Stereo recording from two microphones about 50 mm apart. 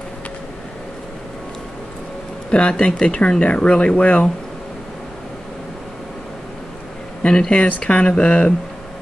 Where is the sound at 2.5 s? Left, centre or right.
Left.